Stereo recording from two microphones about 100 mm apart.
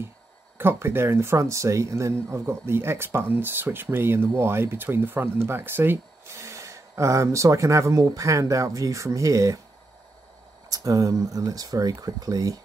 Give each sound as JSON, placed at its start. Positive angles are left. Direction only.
{"t": 0.6, "sound": "speech", "side_deg": -25}
{"t": 10.7, "sound": "speech", "side_deg": -35}